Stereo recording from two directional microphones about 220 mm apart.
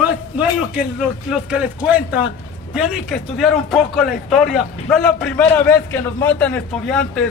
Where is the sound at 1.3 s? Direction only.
5° right (ahead or behind).